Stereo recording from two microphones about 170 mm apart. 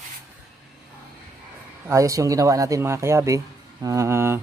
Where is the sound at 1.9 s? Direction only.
20° right (ahead or behind).